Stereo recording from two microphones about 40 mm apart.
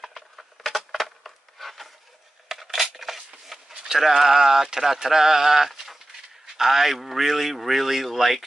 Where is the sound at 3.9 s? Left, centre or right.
Centre.